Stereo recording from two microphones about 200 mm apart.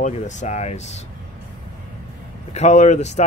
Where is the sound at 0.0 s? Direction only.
35° left (ahead or behind).